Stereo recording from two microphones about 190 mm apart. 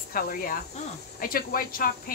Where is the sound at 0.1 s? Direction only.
50° left (ahead or behind).